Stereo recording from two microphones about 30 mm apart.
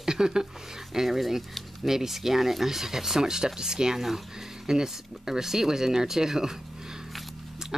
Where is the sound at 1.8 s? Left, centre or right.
Centre.